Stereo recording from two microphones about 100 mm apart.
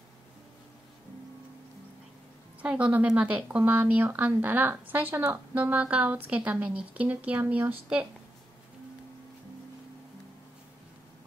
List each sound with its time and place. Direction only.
2.6 s a woman's voice: 10° right (ahead or behind)